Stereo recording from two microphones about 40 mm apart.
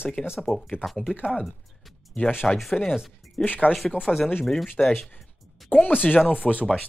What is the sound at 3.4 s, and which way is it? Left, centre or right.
Speech, left.